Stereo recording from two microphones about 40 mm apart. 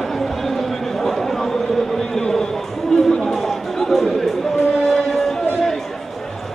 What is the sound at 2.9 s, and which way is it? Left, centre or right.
Chatter, centre.